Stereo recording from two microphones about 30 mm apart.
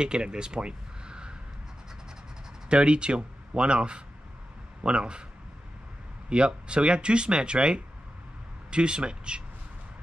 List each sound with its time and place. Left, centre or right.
0.0 s speech: right
2.7 s speech: right
6.2 s speech: right